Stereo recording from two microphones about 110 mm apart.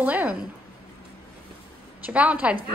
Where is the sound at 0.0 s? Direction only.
15° right (ahead or behind).